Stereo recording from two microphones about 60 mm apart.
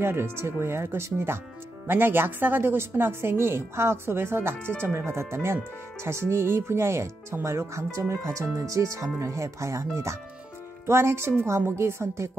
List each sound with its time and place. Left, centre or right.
0.0 s a woman's voice: right
10.9 s a woman's voice: right